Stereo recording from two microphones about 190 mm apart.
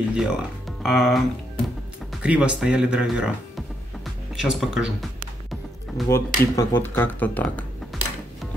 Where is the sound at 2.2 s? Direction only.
5° right (ahead or behind).